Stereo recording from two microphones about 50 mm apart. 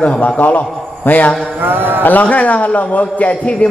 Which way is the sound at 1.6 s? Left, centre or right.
Right.